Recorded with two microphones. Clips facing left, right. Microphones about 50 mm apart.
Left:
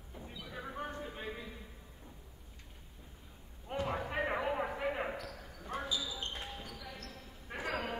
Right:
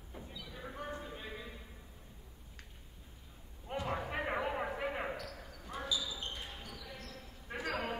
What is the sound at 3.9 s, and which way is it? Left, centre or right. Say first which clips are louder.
Basketball bounce: left 1 dB; centre.